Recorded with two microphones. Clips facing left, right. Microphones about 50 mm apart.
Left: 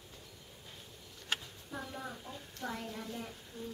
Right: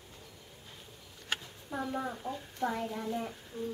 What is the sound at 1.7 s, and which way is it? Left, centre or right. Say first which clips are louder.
A child's voice: right 7 dB; right.